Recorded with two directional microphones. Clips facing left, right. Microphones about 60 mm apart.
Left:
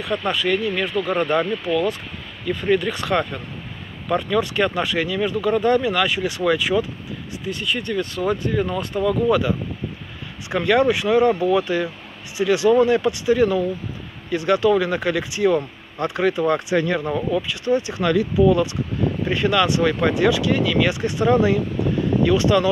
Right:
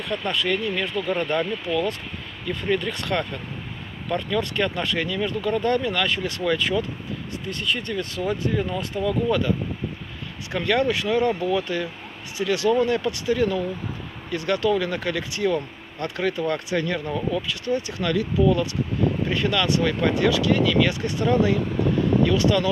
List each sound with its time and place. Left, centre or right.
0.0 s speech: centre
1.7 s speech: centre
10.5 s speech: centre